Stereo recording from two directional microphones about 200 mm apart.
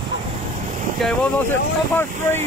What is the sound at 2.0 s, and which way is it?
Speech, 10° left (ahead or behind).